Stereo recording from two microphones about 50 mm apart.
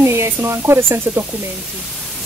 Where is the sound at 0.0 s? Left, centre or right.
Right.